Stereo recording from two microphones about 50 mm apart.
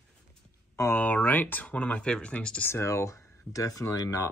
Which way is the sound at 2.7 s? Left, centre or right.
Left.